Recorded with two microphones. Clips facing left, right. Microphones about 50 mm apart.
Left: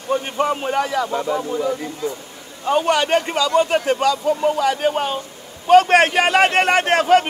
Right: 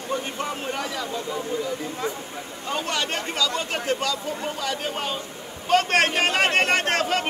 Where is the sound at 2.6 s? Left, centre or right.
Left.